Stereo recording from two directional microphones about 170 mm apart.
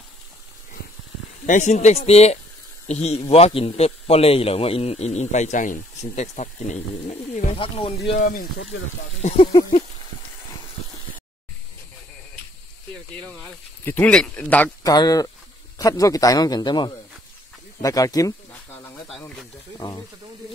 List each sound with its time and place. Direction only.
1.4 s a man's voice: 45° left (ahead or behind)
8.2 s speech: 55° left (ahead or behind)
13.8 s speech: 10° left (ahead or behind)
14.8 s speech: 20° left (ahead or behind)
19.0 s speech: 5° left (ahead or behind)
19.8 s speech: 25° left (ahead or behind)